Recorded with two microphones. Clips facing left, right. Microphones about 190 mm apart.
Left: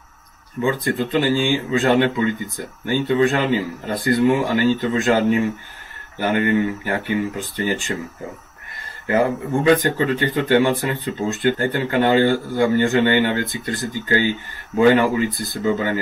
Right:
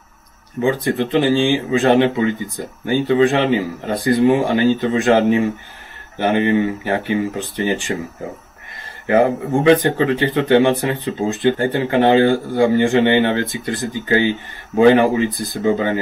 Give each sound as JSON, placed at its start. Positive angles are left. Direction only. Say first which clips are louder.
{"t": 0.8, "sound": "speech", "louder": "right 3 dB", "side_deg": -25}
{"t": 9.0, "sound": "speech", "louder": "right 4 dB", "side_deg": -25}